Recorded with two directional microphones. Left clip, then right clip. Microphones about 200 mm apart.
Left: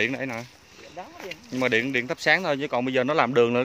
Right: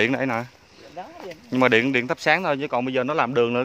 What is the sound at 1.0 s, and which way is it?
Speech, 55° right (ahead or behind).